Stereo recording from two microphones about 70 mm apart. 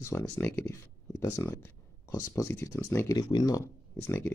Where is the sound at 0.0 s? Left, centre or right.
Left.